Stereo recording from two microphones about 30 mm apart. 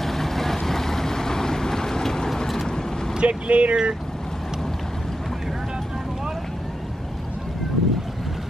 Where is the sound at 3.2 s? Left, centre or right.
Right.